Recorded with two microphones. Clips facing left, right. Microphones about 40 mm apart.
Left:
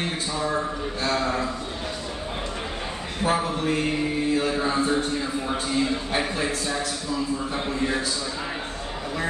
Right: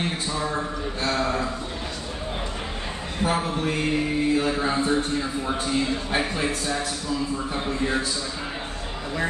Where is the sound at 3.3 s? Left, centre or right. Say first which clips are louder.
Left 2 dB; centre.